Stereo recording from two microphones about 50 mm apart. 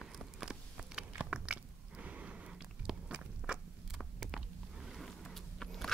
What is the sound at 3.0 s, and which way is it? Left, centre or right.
Walk, centre.